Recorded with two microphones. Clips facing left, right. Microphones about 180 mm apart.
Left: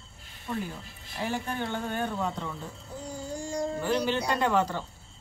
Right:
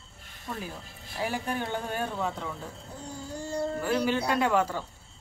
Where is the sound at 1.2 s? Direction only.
10° right (ahead or behind).